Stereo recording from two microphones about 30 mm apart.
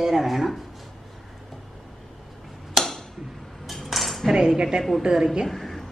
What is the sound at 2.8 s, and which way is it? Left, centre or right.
Tick-tock, centre.